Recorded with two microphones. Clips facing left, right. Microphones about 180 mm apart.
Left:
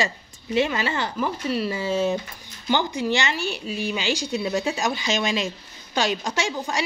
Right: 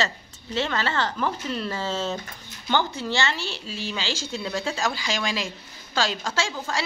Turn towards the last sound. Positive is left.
turn(degrees=20)  # may be behind; listen again after turning